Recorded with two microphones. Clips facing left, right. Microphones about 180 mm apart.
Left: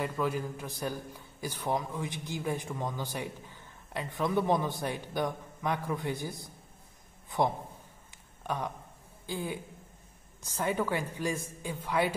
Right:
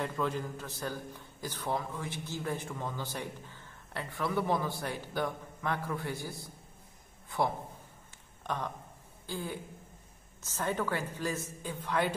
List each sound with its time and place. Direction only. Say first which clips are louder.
0.0 s a man's voice: left 2 dB; 10° left (ahead or behind)